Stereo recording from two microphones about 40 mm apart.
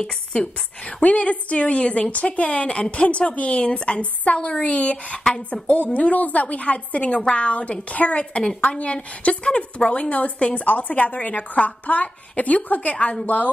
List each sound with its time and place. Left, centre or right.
0.0 s a woman's voice: left